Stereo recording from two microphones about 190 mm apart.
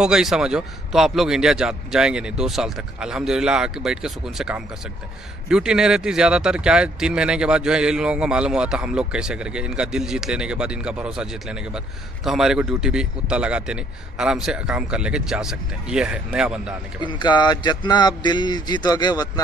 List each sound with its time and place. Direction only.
0.0 s speech: 5° right (ahead or behind)
17.0 s speech: 25° left (ahead or behind)